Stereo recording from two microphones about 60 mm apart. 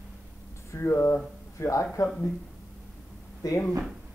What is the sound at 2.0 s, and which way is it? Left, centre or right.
Speech, left.